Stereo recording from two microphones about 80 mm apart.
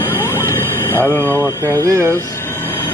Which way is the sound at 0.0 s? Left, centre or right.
Left.